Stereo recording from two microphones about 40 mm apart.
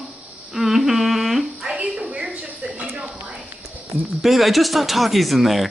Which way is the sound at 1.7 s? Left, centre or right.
Right.